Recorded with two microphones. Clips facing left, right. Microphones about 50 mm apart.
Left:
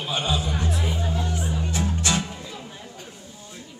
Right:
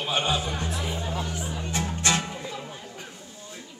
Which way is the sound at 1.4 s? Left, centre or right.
Centre.